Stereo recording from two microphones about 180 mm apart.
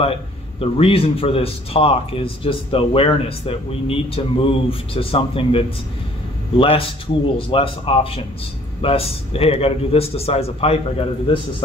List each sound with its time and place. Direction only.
0.0 s speech: 35° left (ahead or behind)